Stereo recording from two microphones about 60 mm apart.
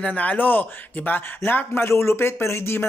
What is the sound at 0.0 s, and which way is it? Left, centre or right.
Speech, left.